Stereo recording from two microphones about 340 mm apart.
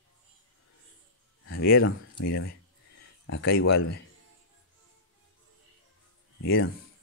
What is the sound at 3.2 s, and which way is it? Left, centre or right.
Speech, left.